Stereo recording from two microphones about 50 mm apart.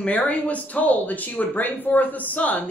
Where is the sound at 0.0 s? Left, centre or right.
Left.